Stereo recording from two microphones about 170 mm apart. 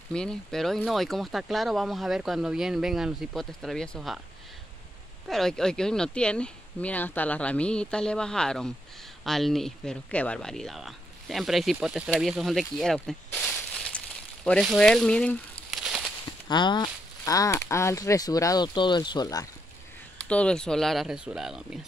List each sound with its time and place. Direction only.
0.1 s speech: 5° left (ahead or behind)
5.3 s speech: 5° left (ahead or behind)
15.7 s a sound: 5° right (ahead or behind)
16.4 s speech: 25° left (ahead or behind)
20.2 s speech: 5° left (ahead or behind)